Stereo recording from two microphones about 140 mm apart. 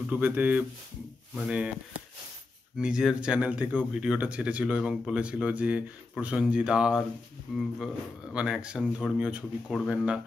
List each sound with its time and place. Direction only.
0.1 s speech: 10° right (ahead or behind)
2.8 s speech: 5° right (ahead or behind)